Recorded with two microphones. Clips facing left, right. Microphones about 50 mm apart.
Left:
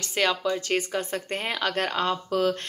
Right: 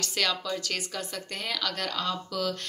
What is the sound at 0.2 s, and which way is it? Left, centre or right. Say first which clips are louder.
A woman's voice: left 5 dB; left.